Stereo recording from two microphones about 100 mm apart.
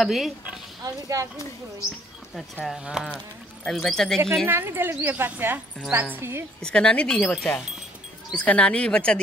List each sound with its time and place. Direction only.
0.0 s speech: centre (ahead or behind)
0.8 s speech: 35° right (ahead or behind)
2.6 s speech: 5° right (ahead or behind)
4.5 s speech: 20° right (ahead or behind)
6.6 s speech: 10° left (ahead or behind)